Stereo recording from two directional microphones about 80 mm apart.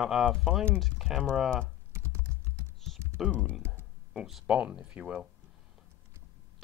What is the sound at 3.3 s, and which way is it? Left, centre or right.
Speech, centre.